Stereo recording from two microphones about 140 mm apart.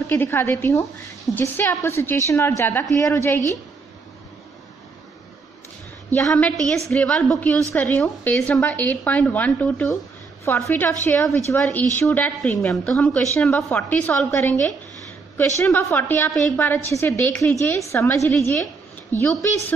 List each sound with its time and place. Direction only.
0.1 s a woman's voice: 15° left (ahead or behind)
6.0 s a woman's voice: 10° left (ahead or behind)